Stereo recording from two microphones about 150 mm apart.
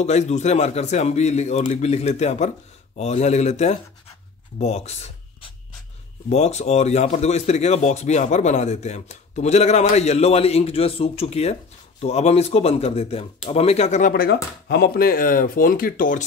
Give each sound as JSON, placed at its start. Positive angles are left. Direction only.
{"t": 0.0, "sound": "speech", "side_deg": 50}
{"t": 14.1, "sound": "speech", "side_deg": 90}